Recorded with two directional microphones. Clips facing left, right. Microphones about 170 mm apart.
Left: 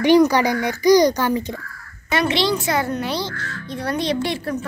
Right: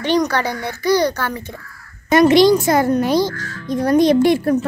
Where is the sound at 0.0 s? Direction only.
10° left (ahead or behind).